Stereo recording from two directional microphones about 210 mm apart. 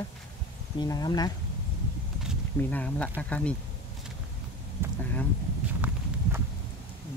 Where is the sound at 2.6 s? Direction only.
10° left (ahead or behind).